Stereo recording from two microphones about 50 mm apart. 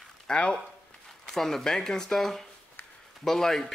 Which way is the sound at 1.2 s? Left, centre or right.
Centre.